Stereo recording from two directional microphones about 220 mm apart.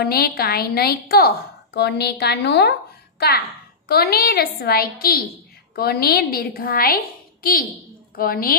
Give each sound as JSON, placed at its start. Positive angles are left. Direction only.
{"t": 0.0, "sound": "a woman's voice", "side_deg": 45}
{"t": 8.2, "sound": "a woman's voice", "side_deg": 40}